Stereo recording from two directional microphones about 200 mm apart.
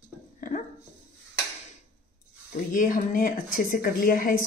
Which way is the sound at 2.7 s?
40° left (ahead or behind).